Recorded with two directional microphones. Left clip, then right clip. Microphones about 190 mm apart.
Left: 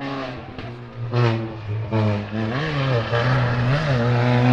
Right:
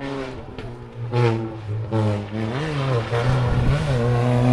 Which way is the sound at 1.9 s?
25° right (ahead or behind).